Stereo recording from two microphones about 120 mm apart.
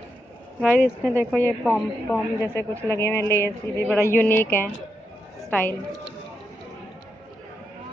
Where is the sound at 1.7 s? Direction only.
15° left (ahead or behind).